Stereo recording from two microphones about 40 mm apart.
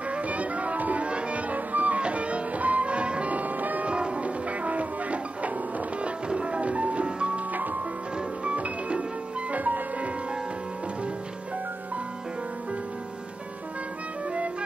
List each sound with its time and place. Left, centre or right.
0.1 s music: right
1.0 s music: right
1.5 s music: right
3.8 s music: right
7.5 s music: right
8.5 s music: right
9.5 s music: right